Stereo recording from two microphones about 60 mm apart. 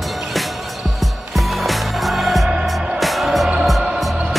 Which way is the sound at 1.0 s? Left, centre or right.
Centre.